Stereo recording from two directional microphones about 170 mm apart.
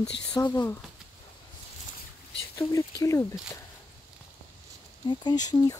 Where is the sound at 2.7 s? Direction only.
20° left (ahead or behind).